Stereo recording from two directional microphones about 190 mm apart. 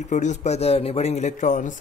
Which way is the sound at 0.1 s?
40° left (ahead or behind).